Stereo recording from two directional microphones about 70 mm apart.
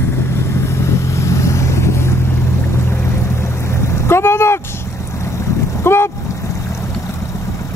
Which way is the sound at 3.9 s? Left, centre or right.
Left.